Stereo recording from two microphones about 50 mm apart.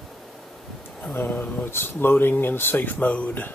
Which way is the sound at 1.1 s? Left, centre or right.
Left.